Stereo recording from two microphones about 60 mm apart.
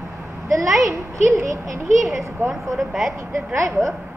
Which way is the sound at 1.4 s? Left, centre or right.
Right.